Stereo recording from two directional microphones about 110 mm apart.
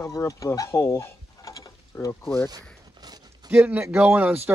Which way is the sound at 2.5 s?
35° right (ahead or behind).